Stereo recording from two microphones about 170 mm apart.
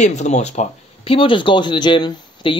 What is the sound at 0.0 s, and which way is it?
Speech, 40° left (ahead or behind).